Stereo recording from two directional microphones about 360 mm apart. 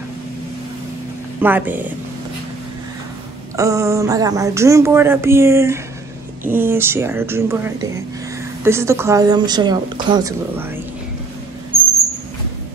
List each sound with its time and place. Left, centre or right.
1.4 s speech: centre
3.5 s speech: centre